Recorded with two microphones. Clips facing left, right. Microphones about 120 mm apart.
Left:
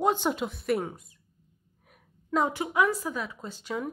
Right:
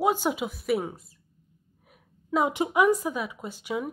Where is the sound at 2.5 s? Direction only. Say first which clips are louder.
Right 4 dB; 20° right (ahead or behind).